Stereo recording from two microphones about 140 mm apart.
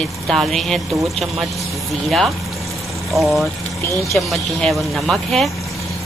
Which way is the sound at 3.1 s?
Centre (ahead or behind).